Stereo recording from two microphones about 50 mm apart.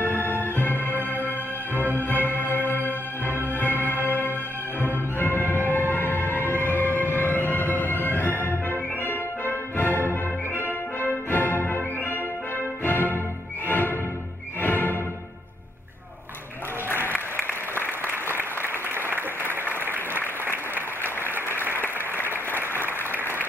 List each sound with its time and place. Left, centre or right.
0.0 s music: left
2.0 s music: left
17.1 s applause: left
18.4 s applause: right
21.7 s applause: left